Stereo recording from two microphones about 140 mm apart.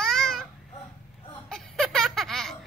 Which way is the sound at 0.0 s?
Centre (ahead or behind).